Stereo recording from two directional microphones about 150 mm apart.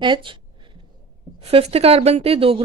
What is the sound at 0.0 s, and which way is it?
Speech, 35° right (ahead or behind).